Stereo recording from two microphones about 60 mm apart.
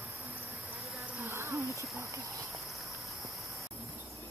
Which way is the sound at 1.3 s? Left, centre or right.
Right.